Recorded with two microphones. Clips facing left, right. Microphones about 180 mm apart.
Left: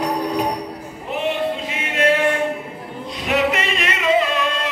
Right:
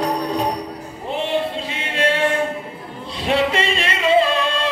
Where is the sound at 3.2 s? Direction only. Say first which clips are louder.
Right 1 dB; 30° right (ahead or behind).